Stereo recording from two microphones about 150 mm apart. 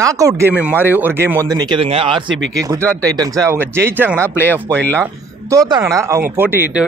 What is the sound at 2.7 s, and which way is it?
Speech, 25° right (ahead or behind).